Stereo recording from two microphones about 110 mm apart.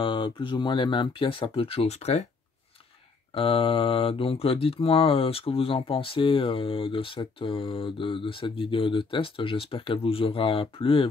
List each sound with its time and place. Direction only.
0.0 s speech: 50° left (ahead or behind); by 2.2 s 75° left (ahead or behind)
3.3 s speech: 55° left (ahead or behind)